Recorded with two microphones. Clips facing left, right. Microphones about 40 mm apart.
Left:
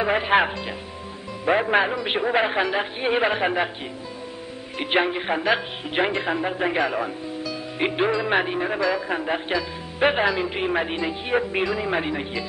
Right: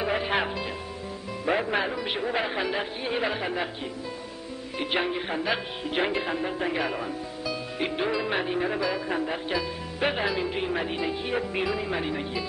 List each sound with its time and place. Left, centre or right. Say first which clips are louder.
0.0 s speech: left 7 dB; left
5.0 s speech: left 5 dB; left
7.8 s speech: left 6 dB; left
8.5 s speech: left 2 dB; centre
9.1 s speech: left 4 dB; left
10.2 s speech: left 5 dB; centre
10.5 s speech: left 4 dB; left